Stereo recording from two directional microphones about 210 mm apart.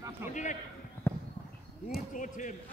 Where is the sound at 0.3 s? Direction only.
35° left (ahead or behind).